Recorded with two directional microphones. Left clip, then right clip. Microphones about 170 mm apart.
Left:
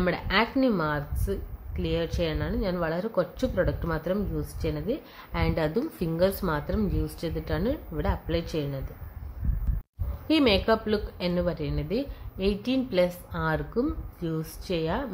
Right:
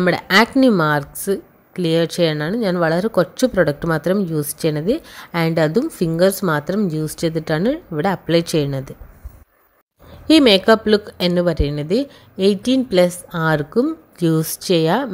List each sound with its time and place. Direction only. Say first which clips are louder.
0.0 s speech: right 11 dB; 55° right (ahead or behind)
10.2 s speech: right 11 dB; 50° right (ahead or behind)